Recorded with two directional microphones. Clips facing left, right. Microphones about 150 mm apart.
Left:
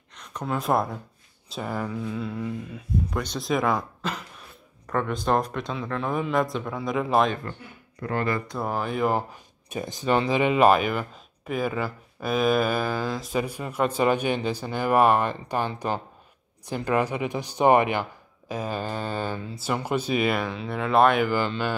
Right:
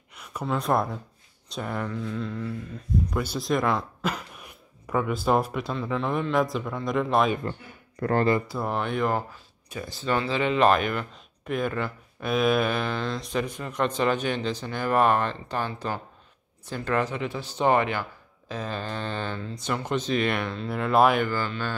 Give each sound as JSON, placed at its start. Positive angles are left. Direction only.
{"t": 0.1, "sound": "a sound", "side_deg": -10}
{"t": 0.6, "sound": "speech", "side_deg": 0}
{"t": 3.2, "sound": "speech", "side_deg": -5}
{"t": 4.0, "sound": "speech", "side_deg": -10}
{"t": 8.0, "sound": "speech", "side_deg": -40}
{"t": 8.5, "sound": "speech", "side_deg": 0}
{"t": 9.3, "sound": "speech", "side_deg": 20}